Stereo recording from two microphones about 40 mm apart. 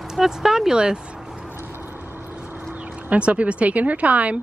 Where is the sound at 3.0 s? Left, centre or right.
Right.